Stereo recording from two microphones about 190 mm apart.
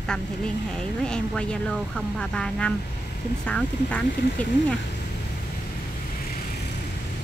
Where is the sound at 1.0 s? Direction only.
5° left (ahead or behind).